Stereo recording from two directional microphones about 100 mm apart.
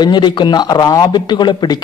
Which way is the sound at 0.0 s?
50° left (ahead or behind).